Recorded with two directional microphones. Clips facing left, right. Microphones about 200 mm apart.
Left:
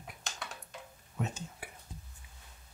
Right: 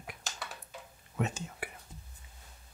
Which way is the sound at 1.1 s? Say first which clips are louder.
Right 3 dB; 80° right.